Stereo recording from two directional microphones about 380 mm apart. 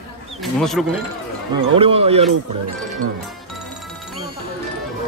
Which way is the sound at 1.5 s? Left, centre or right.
Centre.